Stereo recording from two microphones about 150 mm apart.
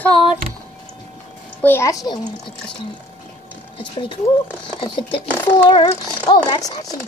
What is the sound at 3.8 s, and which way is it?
Speech, 35° left (ahead or behind).